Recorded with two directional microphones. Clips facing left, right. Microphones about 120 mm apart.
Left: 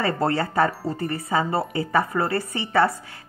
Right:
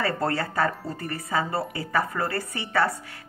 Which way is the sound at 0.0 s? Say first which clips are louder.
Left 3 dB; 25° left (ahead or behind).